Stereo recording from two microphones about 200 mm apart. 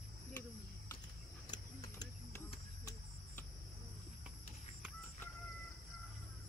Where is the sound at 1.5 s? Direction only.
20° left (ahead or behind).